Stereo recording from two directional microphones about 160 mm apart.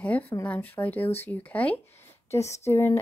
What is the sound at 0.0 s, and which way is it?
Speech, 10° left (ahead or behind).